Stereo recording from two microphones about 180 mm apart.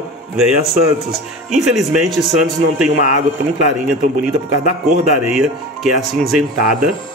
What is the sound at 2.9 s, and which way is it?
Speech, 45° left (ahead or behind).